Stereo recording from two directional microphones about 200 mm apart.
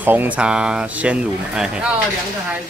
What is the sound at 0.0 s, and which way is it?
Speech, 10° right (ahead or behind).